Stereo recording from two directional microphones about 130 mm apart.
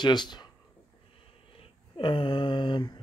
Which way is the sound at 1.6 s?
40° left (ahead or behind).